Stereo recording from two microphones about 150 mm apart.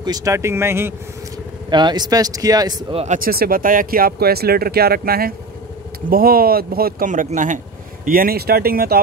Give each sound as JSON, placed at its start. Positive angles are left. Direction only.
{"t": 0.0, "sound": "speech", "side_deg": -25}
{"t": 1.7, "sound": "a man's voice", "side_deg": -30}
{"t": 2.9, "sound": "speech", "side_deg": -40}
{"t": 3.2, "sound": "speech", "side_deg": -80}